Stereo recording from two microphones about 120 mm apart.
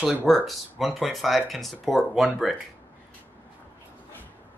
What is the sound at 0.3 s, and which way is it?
Speech, centre (ahead or behind).